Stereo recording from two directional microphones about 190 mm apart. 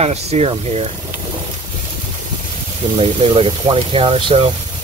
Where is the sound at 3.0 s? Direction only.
30° right (ahead or behind).